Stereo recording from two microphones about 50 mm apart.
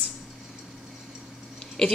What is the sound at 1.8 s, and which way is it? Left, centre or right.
Speech, centre.